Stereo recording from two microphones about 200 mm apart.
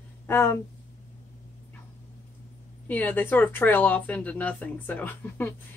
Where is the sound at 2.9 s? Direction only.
10° left (ahead or behind).